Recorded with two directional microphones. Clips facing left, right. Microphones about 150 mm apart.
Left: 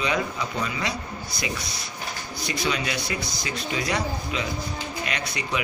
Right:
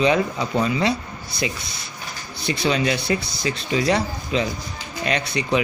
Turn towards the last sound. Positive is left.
turn(degrees=-30)  # may be behind; listen again after turning